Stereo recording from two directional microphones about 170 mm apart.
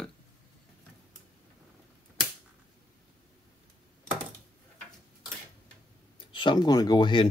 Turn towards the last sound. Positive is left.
turn(degrees=25)  # may be behind; listen again after turning